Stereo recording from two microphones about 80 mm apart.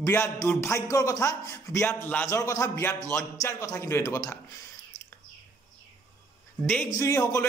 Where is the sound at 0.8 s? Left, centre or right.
Left.